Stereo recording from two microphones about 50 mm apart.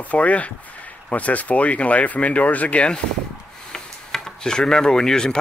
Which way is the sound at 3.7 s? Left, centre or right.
Centre.